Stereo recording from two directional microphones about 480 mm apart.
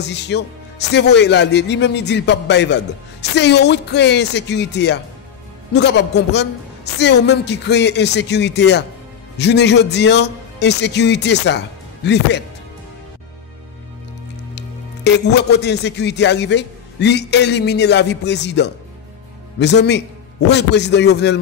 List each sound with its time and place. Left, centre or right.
0.0 s speech: left
15.0 s speech: left